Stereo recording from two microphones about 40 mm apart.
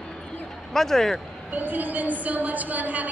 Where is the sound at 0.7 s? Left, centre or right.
Centre.